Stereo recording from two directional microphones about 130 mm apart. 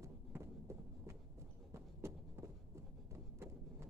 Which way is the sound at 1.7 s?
20° right (ahead or behind).